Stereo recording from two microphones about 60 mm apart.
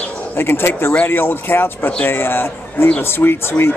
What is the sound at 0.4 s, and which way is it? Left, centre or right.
Speech, left.